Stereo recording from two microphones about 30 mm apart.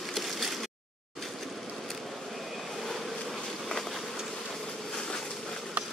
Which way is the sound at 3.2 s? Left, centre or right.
Centre.